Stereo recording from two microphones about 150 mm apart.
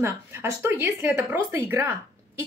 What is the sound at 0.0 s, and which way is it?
Speech, 15° right (ahead or behind).